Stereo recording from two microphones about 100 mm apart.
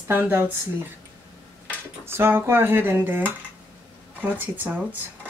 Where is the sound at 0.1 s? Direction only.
20° right (ahead or behind).